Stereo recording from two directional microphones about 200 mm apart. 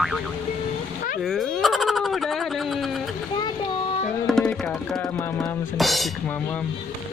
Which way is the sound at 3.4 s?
30° left (ahead or behind).